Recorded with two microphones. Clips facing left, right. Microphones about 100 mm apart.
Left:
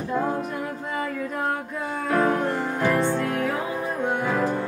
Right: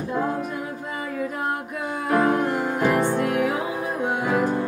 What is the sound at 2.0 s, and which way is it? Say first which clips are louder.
Music: right 2 dB; 15° right (ahead or behind).